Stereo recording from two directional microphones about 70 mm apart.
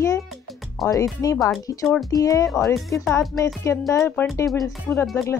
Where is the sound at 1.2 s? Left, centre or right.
Left.